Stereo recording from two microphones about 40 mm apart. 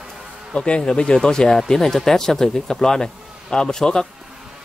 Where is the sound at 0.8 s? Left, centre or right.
Left.